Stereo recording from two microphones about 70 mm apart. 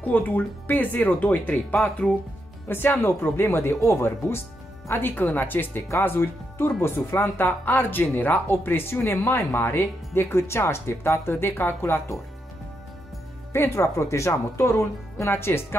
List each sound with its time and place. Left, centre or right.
0.0 s speech: left
2.7 s speech: left
13.5 s speech: left